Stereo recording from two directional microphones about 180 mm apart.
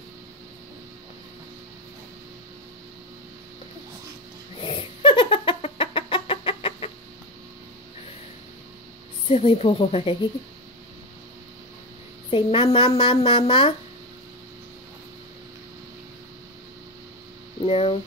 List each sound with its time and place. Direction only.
4.6 s a sound: 30° left (ahead or behind)
9.3 s speech: 35° left (ahead or behind)
12.3 s speech: 30° left (ahead or behind)
17.6 s speech: 30° left (ahead or behind)